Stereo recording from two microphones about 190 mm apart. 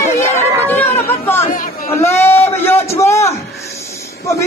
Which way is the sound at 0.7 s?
10° left (ahead or behind).